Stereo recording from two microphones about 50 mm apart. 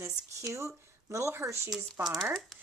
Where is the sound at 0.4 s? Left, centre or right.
Right.